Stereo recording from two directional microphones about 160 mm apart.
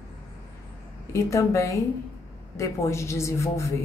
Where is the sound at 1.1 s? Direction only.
20° left (ahead or behind).